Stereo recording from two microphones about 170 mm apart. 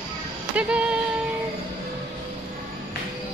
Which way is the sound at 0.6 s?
5° right (ahead or behind).